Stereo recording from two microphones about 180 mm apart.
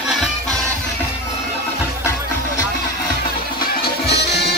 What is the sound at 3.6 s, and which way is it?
Music, 65° left (ahead or behind).